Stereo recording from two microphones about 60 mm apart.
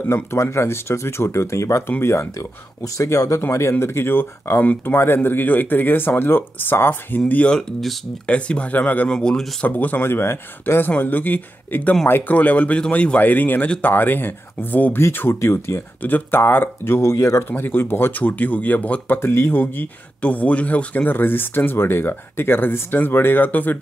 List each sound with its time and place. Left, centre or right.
0.0 s speech: left
1.9 s speech: left
2.3 s speech: left
3.8 s speech: left
9.1 s speech: centre
9.7 s speech: left
10.0 s speech: left
15.4 s speech: left
16.0 s speech: left
17.0 s speech: left
17.5 s speech: left
19.1 s speech: left
19.6 s speech: left